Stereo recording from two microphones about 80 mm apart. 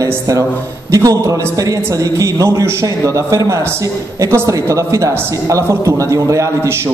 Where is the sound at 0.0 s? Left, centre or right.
Right.